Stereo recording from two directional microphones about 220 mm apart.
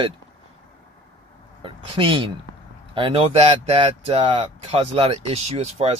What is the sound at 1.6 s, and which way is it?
Speech, 25° right (ahead or behind).